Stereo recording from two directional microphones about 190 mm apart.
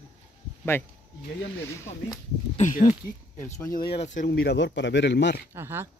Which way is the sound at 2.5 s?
40° left (ahead or behind).